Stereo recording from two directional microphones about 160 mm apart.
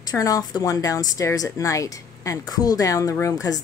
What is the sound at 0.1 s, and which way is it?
A woman's voice, 20° left (ahead or behind).